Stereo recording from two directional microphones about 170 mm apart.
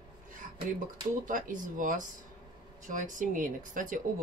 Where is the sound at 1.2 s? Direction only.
50° right (ahead or behind).